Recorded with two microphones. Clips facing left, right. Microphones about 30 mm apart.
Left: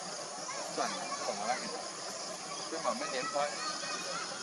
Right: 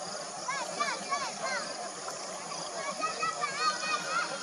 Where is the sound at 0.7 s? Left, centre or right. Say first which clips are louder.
Right 1 dB; right.